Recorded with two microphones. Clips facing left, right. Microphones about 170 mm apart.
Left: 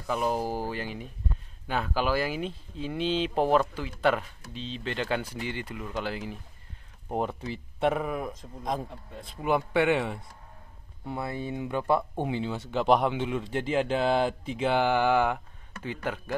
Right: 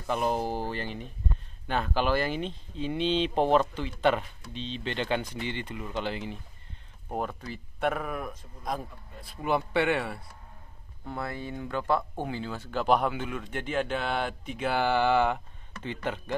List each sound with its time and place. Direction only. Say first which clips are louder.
0.0 s speech: even; centre (ahead or behind)
7.1 s a man's voice: left 3 dB; 25° left (ahead or behind)
9.4 s a man's voice: left 2 dB; 10° left (ahead or behind)